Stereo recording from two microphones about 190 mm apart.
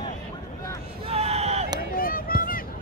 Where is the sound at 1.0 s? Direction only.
35° right (ahead or behind).